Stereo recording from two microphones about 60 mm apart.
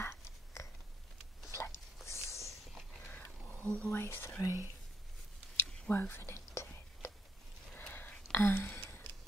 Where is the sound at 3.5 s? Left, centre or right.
Left.